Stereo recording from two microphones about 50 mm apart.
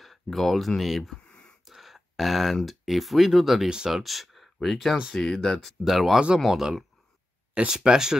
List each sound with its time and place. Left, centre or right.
0.0 s speech: centre
1.1 s a sound: centre
1.7 s speech: centre
6.1 s speech: centre
6.4 s speech: centre
7.5 s speech: centre